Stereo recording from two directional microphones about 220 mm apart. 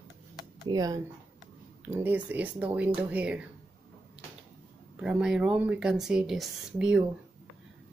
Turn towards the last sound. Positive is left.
turn(degrees=0)  # may be behind; listen again after turning